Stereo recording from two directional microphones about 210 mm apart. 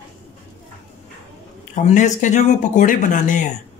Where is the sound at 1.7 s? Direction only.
35° left (ahead or behind).